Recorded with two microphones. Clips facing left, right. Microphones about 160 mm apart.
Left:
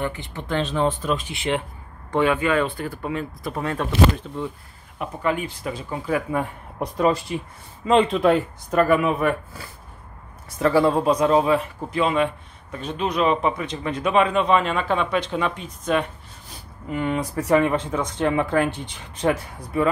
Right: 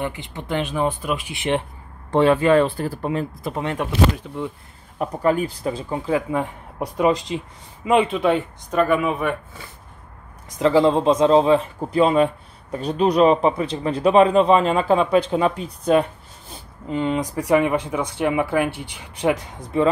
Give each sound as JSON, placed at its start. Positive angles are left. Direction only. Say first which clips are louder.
{"t": 0.0, "sound": "speech", "louder": "even", "side_deg": -15}
{"t": 2.0, "sound": "a man's voice", "louder": "right 5 dB", "side_deg": -30}
{"t": 3.5, "sound": "speech", "louder": "even", "side_deg": -20}
{"t": 4.9, "sound": "a man's voice", "louder": "right 5 dB", "side_deg": -40}
{"t": 10.5, "sound": "a man's voice", "louder": "right 2 dB", "side_deg": -15}